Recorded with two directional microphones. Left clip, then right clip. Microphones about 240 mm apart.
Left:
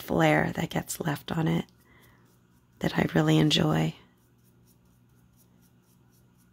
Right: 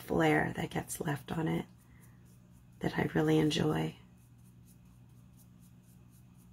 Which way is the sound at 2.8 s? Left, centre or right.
Left.